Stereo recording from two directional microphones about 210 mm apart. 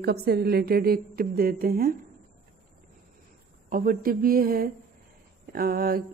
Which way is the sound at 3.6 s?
40° right (ahead or behind).